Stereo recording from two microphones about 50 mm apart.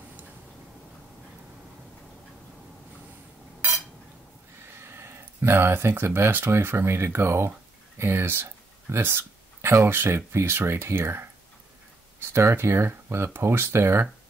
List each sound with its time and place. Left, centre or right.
4.6 s speech: right